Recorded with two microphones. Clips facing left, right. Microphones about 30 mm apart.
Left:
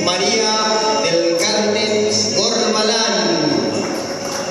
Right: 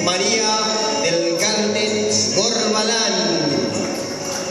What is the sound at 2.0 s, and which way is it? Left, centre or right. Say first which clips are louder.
Music: left 2 dB; left.